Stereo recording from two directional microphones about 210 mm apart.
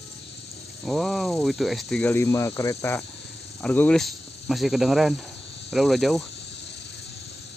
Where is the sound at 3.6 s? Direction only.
5° left (ahead or behind).